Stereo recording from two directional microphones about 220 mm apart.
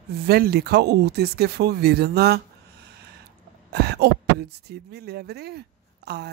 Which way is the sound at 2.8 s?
50° right (ahead or behind).